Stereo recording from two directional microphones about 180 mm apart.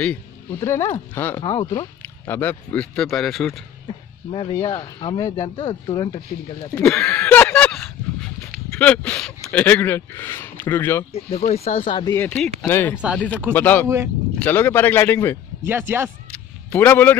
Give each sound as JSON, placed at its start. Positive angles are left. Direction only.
{"t": 0.6, "sound": "speech", "side_deg": 15}
{"t": 1.4, "sound": "speech", "side_deg": 25}
{"t": 3.8, "sound": "a sound", "side_deg": 25}
{"t": 4.6, "sound": "speech", "side_deg": 25}
{"t": 6.7, "sound": "a sound", "side_deg": 5}
{"t": 8.7, "sound": "speech", "side_deg": 10}
{"t": 11.2, "sound": "speech", "side_deg": 35}
{"t": 12.1, "sound": "speech", "side_deg": 10}
{"t": 15.6, "sound": "speech", "side_deg": -10}
{"t": 16.3, "sound": "a sound", "side_deg": 10}